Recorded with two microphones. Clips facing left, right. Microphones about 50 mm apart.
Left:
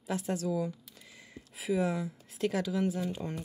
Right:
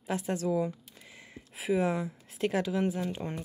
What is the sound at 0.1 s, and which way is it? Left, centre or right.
Speech, right.